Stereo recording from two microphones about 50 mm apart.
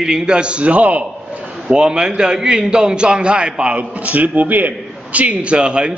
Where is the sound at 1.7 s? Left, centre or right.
Centre.